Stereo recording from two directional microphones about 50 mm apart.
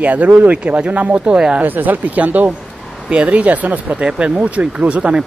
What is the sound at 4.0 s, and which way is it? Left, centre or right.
Speech, centre.